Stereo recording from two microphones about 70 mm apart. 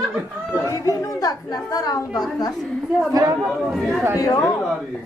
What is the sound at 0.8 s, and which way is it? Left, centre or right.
Speech, left.